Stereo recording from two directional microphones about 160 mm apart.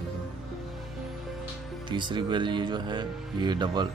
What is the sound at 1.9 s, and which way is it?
Speech, 30° right (ahead or behind).